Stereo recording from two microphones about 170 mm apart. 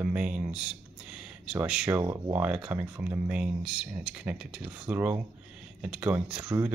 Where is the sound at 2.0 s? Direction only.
15° right (ahead or behind).